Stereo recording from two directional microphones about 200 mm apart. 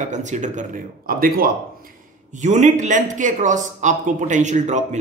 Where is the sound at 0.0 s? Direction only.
35° right (ahead or behind).